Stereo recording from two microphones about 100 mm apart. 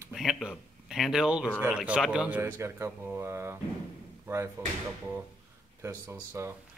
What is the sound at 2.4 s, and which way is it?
Speech, 25° right (ahead or behind).